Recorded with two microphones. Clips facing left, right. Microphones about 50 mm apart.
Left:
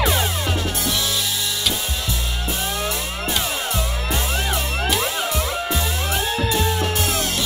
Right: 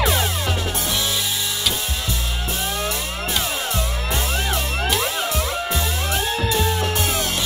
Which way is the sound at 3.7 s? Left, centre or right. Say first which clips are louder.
Even; centre.